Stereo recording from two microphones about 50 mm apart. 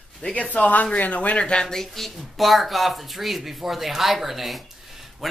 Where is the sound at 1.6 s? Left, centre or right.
Centre.